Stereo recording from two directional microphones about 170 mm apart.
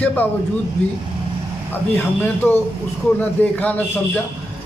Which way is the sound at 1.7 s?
10° left (ahead or behind).